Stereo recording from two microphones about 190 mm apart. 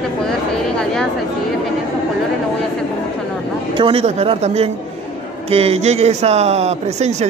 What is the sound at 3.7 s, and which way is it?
Speech, 30° right (ahead or behind).